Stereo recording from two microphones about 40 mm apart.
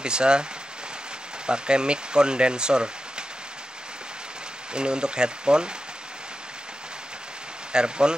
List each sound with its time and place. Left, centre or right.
0.0 s speech: right
4.7 s speech: right
7.7 s speech: right